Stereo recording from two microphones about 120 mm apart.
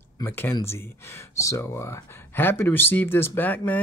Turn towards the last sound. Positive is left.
turn(degrees=15)  # may be behind; listen again after turning